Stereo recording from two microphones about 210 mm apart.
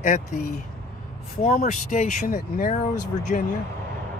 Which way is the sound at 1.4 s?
35° left (ahead or behind).